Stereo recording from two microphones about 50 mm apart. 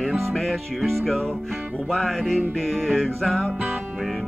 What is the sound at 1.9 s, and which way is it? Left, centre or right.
Music, centre.